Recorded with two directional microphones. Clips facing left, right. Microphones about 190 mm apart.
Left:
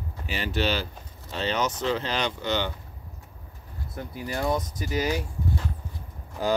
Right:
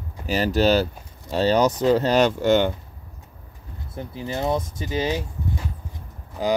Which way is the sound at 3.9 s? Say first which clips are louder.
Right 3 dB; 25° right (ahead or behind).